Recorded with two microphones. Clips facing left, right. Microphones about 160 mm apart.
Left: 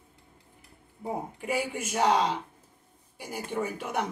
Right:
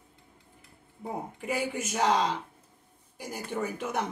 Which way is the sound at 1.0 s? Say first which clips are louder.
Left 2 dB; 10° left (ahead or behind).